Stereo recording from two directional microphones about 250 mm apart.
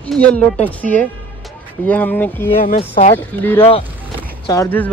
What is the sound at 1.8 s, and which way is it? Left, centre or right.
Speech, centre.